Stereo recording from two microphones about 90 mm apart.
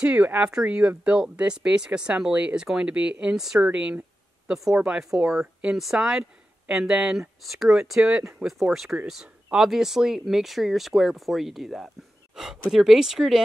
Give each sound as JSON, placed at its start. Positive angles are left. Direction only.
{"t": 0.0, "sound": "speech", "side_deg": -15}